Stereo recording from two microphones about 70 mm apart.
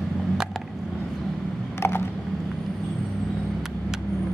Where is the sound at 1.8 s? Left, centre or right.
Left.